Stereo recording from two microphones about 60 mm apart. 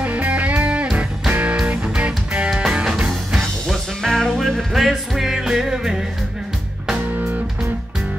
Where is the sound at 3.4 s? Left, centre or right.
Centre.